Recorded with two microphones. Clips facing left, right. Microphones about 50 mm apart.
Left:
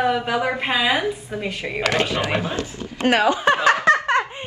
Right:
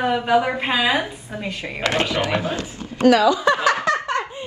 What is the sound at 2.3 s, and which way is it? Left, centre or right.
Speech, left.